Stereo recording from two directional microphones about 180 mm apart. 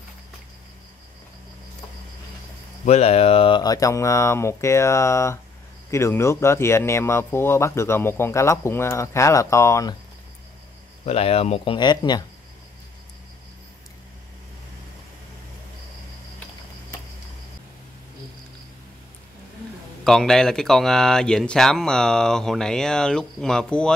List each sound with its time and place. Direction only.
2.8 s speech: 40° left (ahead or behind); by 9.9 s 15° left (ahead or behind)
11.1 s speech: 35° left (ahead or behind)
20.1 s speech: 5° left (ahead or behind)